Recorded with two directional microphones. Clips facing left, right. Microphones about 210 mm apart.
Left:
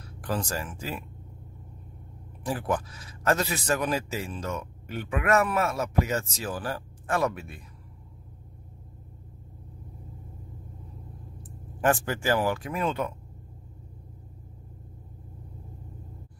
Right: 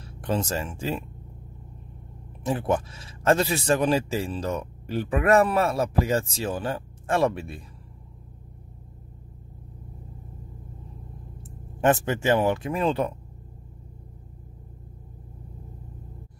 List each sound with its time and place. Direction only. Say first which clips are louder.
0.0 s speech: right 4 dB; 25° right (ahead or behind)
2.4 s a man's voice: right 4 dB; 25° right (ahead or behind)
11.8 s a man's voice: right 4 dB; 20° right (ahead or behind)